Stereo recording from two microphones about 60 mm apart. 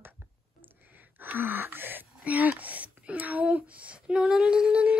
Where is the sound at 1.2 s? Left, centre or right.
Right.